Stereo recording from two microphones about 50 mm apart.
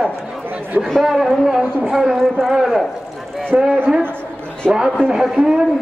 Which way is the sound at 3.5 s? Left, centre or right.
Right.